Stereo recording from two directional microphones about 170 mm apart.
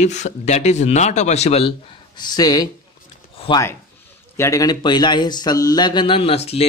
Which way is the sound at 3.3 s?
35° left (ahead or behind).